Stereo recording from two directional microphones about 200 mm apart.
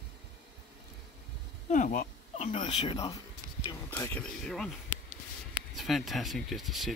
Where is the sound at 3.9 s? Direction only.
10° left (ahead or behind).